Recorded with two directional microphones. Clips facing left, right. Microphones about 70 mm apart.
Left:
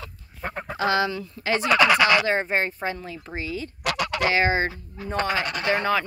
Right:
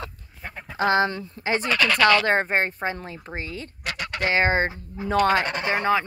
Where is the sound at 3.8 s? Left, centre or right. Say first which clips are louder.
Left 4 dB; left.